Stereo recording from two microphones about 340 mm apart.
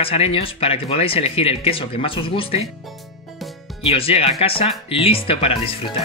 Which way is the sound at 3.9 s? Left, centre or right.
Centre.